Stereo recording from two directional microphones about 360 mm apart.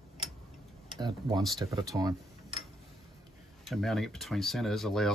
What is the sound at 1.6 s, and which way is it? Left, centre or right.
Speech, centre.